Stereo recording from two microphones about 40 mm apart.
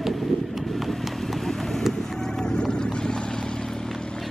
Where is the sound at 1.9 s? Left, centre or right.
Centre.